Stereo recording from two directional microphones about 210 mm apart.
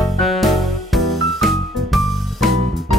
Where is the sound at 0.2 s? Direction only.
Centre (ahead or behind).